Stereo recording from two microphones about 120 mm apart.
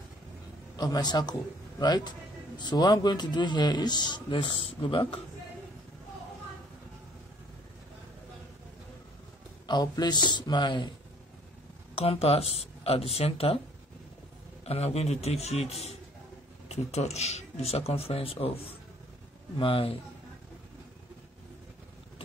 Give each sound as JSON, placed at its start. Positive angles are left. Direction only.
{"t": 0.7, "sound": "a man's voice", "side_deg": 35}
{"t": 9.7, "sound": "a man's voice", "side_deg": 35}
{"t": 12.0, "sound": "speech", "side_deg": 55}
{"t": 14.6, "sound": "speech", "side_deg": 60}
{"t": 19.6, "sound": "a man's voice", "side_deg": 50}